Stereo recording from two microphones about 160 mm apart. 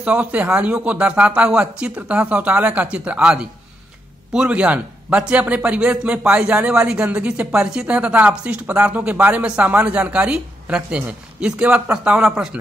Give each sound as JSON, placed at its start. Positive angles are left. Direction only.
{"t": 0.0, "sound": "speech", "side_deg": -10}